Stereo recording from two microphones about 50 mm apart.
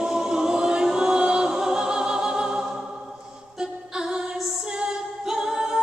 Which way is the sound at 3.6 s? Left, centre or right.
Centre.